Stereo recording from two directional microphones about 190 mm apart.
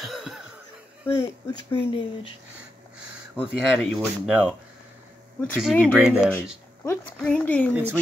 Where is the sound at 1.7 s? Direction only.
25° left (ahead or behind).